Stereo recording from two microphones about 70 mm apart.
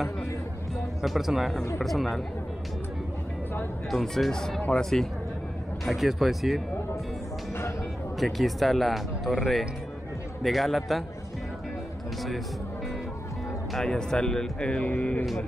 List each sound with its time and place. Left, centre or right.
1.0 s speech: centre
3.9 s speech: centre
4.6 s speech: centre
5.9 s speech: centre
8.2 s speech: centre
13.7 s speech: centre